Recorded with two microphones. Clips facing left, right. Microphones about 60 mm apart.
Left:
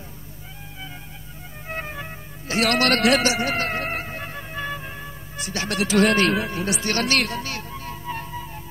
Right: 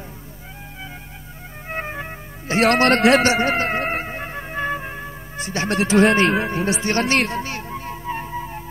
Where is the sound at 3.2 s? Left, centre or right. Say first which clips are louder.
Right 4 dB; right.